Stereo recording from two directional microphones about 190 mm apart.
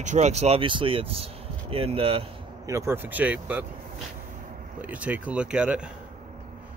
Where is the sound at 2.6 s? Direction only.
15° right (ahead or behind).